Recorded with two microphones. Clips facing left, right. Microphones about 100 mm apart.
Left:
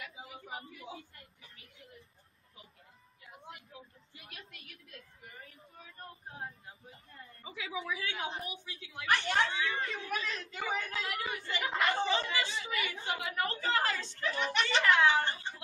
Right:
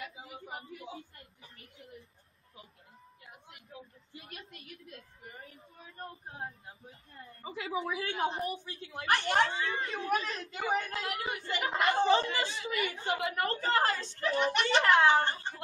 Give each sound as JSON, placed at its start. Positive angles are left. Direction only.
{"t": 0.0, "sound": "a sound", "side_deg": -40}
{"t": 4.1, "sound": "a woman's voice", "side_deg": -40}
{"t": 7.4, "sound": "speech", "side_deg": -45}